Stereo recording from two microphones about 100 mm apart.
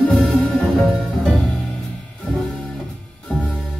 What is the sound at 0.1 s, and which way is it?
Music, 5° left (ahead or behind).